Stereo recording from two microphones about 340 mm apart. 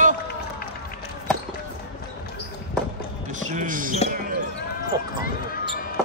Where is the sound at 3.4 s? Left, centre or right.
Right.